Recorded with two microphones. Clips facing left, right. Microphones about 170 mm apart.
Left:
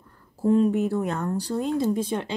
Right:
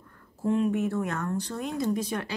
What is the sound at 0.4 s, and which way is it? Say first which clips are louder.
A woman's voice: left 5 dB; 35° left (ahead or behind).